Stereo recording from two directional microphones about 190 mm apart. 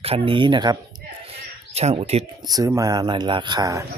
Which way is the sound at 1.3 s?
35° right (ahead or behind).